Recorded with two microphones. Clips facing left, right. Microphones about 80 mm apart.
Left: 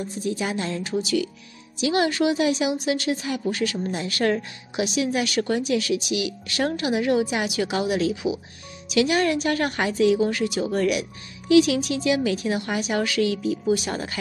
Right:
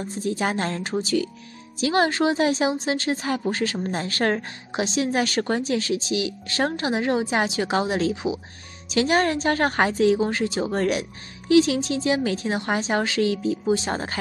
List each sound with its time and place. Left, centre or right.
0.0 s speech: right